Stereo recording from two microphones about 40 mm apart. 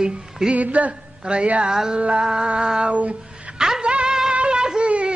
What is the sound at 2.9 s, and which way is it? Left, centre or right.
Speech, right.